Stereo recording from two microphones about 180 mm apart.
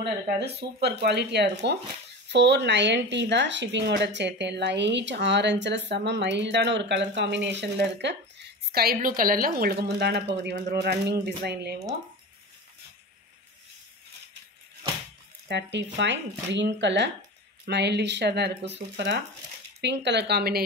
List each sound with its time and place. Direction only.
0.4 s a woman's voice: 65° right (ahead or behind)
15.4 s a woman's voice: 75° right (ahead or behind)